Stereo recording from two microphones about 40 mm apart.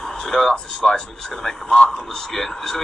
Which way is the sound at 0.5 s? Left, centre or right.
Centre.